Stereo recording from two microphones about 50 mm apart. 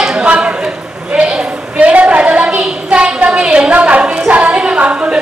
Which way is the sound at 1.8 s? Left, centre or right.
Right.